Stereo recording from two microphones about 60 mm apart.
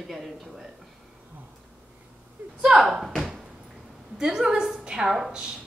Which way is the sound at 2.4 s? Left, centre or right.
Right.